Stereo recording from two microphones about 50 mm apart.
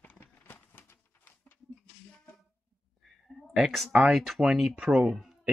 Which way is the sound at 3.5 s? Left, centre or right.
Centre.